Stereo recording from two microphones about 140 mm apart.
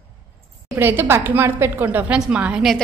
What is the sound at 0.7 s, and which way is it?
A woman's voice, 15° right (ahead or behind).